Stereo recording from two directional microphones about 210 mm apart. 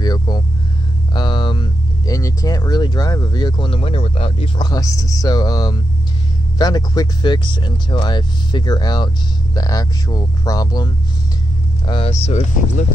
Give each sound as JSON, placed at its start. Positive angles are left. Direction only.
{"t": 0.0, "sound": "vehicle", "side_deg": 20}
{"t": 1.1, "sound": "speech", "side_deg": 20}